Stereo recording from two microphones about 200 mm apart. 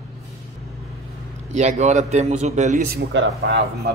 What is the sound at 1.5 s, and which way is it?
A man's voice, 35° right (ahead or behind).